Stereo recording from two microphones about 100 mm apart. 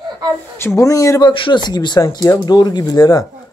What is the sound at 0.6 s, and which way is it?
Speech, 25° left (ahead or behind).